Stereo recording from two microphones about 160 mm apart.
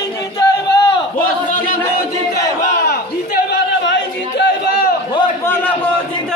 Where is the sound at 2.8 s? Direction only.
90° left.